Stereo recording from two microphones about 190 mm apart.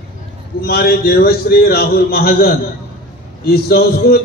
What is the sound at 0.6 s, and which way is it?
A man's voice, 55° left (ahead or behind).